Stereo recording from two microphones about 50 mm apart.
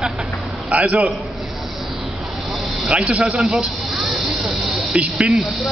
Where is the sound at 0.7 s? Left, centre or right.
Right.